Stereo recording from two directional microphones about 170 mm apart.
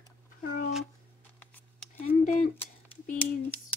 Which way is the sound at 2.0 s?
45° left (ahead or behind).